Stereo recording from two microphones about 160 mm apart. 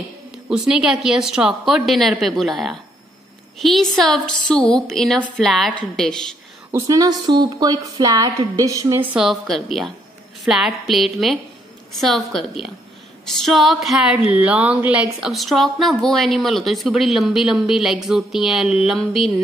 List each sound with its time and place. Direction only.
0.5 s speech: 5° right (ahead or behind)
6.7 s a woman's voice: 20° right (ahead or behind)
9.0 s speech: 5° right (ahead or behind)